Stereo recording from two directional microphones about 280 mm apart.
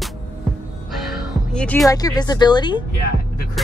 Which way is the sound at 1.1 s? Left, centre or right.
Centre.